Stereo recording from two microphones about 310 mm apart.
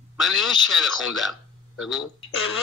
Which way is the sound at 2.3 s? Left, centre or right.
Left.